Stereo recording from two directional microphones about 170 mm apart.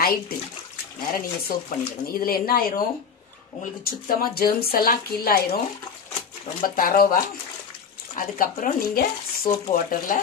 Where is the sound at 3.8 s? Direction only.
60° left (ahead or behind).